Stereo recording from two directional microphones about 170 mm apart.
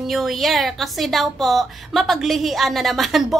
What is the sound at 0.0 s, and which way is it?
Speech, centre (ahead or behind).